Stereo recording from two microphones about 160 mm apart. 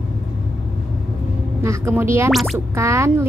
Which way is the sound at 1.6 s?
15° right (ahead or behind).